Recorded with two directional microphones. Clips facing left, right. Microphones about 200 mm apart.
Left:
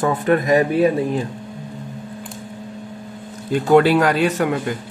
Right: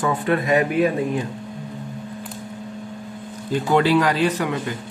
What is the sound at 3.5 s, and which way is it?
Speech, 50° left (ahead or behind).